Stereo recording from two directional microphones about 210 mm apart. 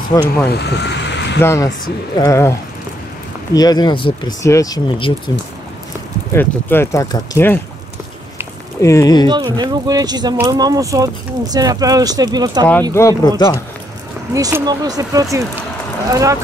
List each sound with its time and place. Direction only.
0.1 s speech: 15° left (ahead or behind)
0.5 s vehicle: 55° left (ahead or behind)
1.4 s speech: 10° left (ahead or behind)
3.5 s speech: 20° left (ahead or behind)
6.3 s speech: 10° left (ahead or behind)
8.8 s speech: 15° left (ahead or behind)
9.3 s speech: 20° right (ahead or behind)
12.9 s speech: 15° left (ahead or behind)
14.3 s speech: 15° right (ahead or behind)